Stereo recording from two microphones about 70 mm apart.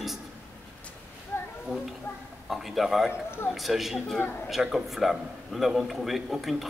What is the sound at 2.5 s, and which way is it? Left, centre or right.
A man's voice, centre.